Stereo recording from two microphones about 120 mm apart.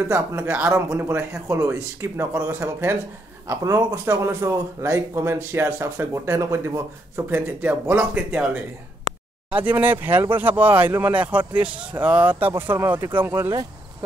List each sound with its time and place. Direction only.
0.1 s speech: 20° right (ahead or behind)
9.5 s speech: 15° right (ahead or behind)